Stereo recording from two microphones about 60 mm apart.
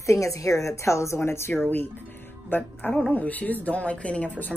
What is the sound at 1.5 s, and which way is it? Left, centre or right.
Speech, left.